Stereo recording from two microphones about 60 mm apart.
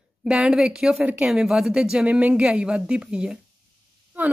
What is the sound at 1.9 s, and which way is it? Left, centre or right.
A woman's voice, centre.